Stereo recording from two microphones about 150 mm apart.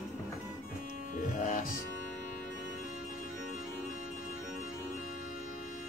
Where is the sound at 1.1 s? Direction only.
60° left (ahead or behind).